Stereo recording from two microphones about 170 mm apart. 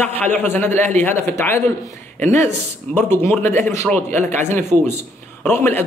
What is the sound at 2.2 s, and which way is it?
Speech, 45° right (ahead or behind).